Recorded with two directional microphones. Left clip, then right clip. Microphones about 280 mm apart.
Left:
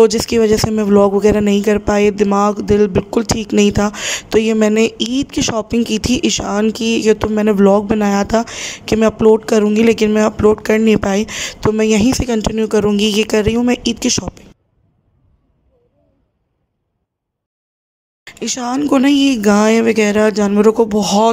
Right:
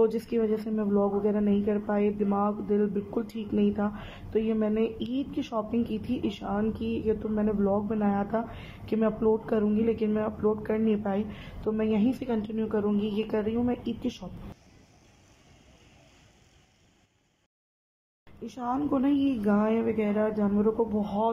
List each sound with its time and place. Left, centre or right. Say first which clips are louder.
0.0 s speech: left 15 dB; left
18.2 s speech: left 14 dB; left